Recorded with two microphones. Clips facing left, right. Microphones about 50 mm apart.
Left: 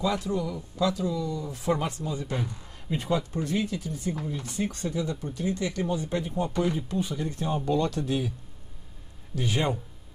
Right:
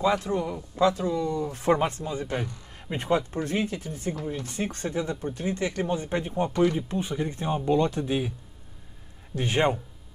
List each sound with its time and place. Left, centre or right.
0.0 s speech: right
9.3 s speech: right